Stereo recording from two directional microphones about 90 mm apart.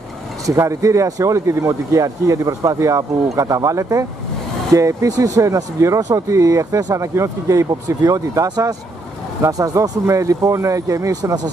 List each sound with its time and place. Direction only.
0.5 s speech: 35° right (ahead or behind)